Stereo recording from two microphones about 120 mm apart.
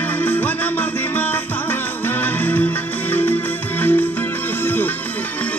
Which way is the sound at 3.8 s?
15° left (ahead or behind).